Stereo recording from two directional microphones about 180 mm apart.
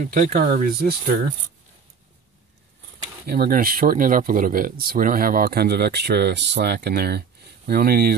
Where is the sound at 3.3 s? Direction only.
55° right (ahead or behind).